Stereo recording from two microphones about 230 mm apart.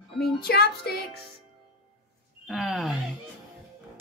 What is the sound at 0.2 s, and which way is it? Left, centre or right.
Music, left.